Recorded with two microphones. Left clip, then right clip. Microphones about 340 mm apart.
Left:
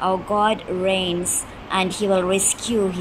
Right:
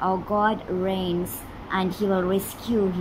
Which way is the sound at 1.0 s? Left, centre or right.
Centre.